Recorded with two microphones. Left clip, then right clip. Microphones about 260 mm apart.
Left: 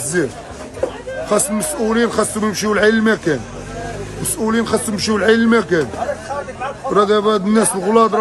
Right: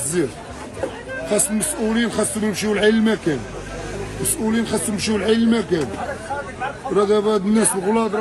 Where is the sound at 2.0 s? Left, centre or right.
Centre.